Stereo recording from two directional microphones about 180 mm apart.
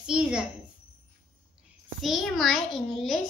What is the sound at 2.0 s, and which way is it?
A woman's voice, centre (ahead or behind).